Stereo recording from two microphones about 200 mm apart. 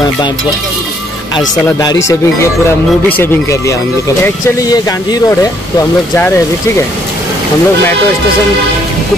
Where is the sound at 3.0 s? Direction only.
10° left (ahead or behind).